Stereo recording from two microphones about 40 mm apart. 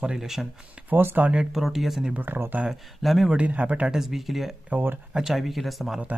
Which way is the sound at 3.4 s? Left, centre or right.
Right.